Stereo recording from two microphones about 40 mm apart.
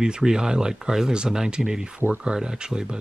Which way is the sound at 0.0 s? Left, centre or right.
Centre.